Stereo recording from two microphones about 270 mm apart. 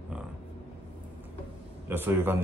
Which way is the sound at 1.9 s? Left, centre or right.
Centre.